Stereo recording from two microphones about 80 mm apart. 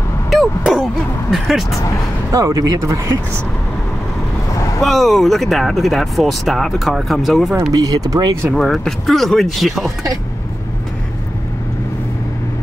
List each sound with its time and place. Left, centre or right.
0.3 s a sound: centre
1.3 s speech: centre
2.3 s speech: right
4.7 s speech: centre
7.7 s speech: right
8.5 s speech: centre